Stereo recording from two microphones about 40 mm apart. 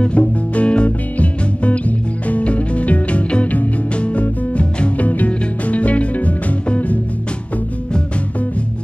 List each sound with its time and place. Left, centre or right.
0.0 s music: left